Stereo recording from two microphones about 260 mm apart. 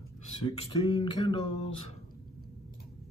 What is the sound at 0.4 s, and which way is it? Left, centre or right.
Speech, centre.